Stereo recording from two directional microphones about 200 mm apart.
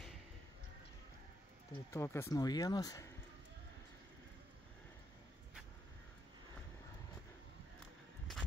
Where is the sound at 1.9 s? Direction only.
15° left (ahead or behind).